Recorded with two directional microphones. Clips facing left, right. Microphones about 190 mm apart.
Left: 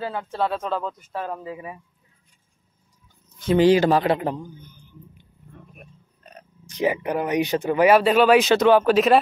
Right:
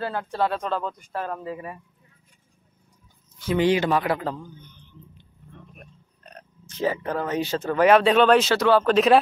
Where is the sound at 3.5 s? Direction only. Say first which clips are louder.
Left 5 dB; 35° left (ahead or behind); by 8.4 s 5° left (ahead or behind).